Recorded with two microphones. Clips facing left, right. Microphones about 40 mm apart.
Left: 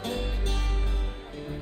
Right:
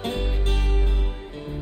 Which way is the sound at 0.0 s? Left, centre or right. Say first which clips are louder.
Right 4 dB; right.